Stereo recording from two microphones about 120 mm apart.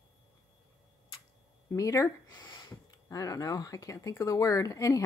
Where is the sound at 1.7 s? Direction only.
25° left (ahead or behind).